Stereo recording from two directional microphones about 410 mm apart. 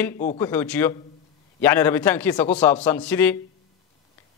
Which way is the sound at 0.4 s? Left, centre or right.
Centre.